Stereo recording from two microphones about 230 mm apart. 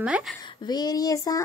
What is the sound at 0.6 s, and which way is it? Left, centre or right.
Speech, centre.